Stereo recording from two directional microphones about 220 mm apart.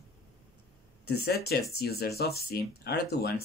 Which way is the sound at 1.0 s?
45° left (ahead or behind).